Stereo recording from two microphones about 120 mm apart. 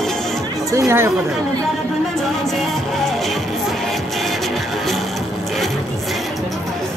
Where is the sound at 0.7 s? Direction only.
25° right (ahead or behind).